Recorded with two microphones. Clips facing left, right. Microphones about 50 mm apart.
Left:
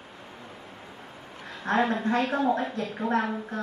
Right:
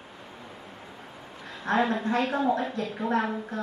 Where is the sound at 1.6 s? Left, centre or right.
Left.